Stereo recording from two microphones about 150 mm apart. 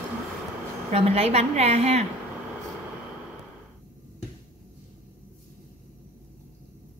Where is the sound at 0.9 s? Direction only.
45° right (ahead or behind).